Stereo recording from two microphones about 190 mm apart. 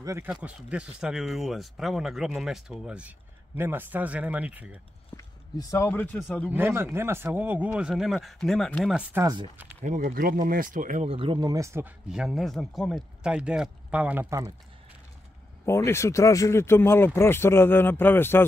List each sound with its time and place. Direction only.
0.0 s speech: 15° right (ahead or behind)
0.3 s speech: 5° right (ahead or behind)
5.1 s speech: 15° left (ahead or behind); by 6.5 s centre (ahead or behind)
6.5 s speech: 10° right (ahead or behind)
9.1 s speech: 20° right (ahead or behind)
9.8 s speech: 40° right (ahead or behind); by 14.5 s 15° right (ahead or behind)
15.6 s speech: 15° left (ahead or behind)